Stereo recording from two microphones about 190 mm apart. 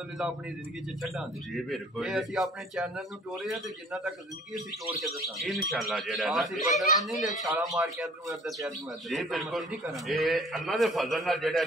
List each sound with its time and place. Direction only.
1.0 s a man's voice: centre (ahead or behind)
7.4 s speech: 15° right (ahead or behind)
7.7 s a man's voice: centre (ahead or behind)